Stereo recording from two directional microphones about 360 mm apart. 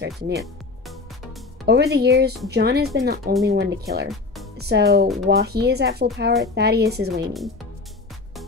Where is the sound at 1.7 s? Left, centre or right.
Right.